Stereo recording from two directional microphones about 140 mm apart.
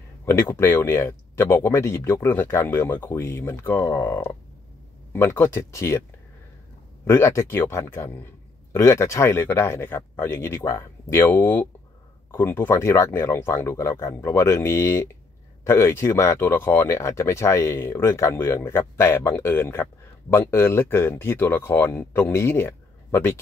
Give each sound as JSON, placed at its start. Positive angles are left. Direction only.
{"t": 0.2, "sound": "speech", "side_deg": 20}
{"t": 7.1, "sound": "speech", "side_deg": 20}